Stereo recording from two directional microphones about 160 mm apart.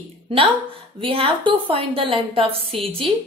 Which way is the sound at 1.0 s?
35° right (ahead or behind).